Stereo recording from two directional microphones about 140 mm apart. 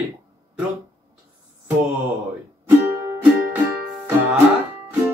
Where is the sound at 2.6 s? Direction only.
15° right (ahead or behind).